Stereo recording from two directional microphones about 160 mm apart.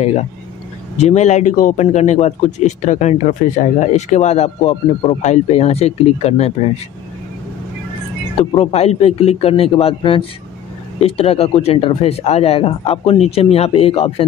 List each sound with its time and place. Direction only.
0.0 s a man's voice: 45° left (ahead or behind)
8.4 s speech: 40° left (ahead or behind)